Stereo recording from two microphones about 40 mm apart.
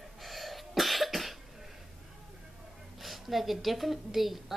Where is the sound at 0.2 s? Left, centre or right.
Centre.